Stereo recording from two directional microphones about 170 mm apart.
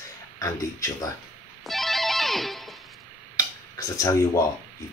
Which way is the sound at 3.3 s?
20° left (ahead or behind).